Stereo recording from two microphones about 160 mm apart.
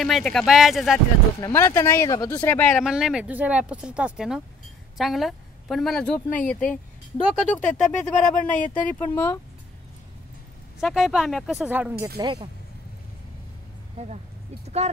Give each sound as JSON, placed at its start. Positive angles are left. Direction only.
{"t": 0.0, "sound": "speech", "side_deg": 0}
{"t": 1.4, "sound": "speech", "side_deg": 15}
{"t": 2.8, "sound": "a woman's voice", "side_deg": -5}
{"t": 8.5, "sound": "speech", "side_deg": 55}
{"t": 9.0, "sound": "speech", "side_deg": 10}
{"t": 10.8, "sound": "speech", "side_deg": 0}
{"t": 12.2, "sound": "speech", "side_deg": -30}
{"t": 13.9, "sound": "speech", "side_deg": -45}